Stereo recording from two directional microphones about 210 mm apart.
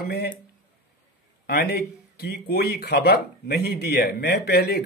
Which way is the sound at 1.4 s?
50° left (ahead or behind).